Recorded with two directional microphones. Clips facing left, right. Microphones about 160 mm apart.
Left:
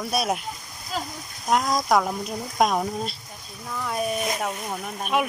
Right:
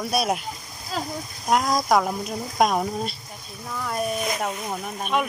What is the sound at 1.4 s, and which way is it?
Speech, 5° right (ahead or behind).